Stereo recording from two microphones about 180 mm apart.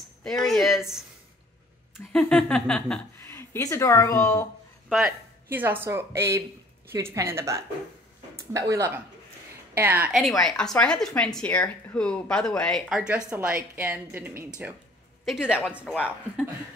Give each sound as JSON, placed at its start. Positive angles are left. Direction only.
{"t": 0.2, "sound": "speech", "side_deg": 0}
{"t": 3.3, "sound": "a woman's voice", "side_deg": 15}
{"t": 4.8, "sound": "speech", "side_deg": 0}
{"t": 5.5, "sound": "a woman's voice", "side_deg": -10}
{"t": 10.4, "sound": "a woman's voice", "side_deg": 5}
{"t": 15.8, "sound": "speech", "side_deg": 5}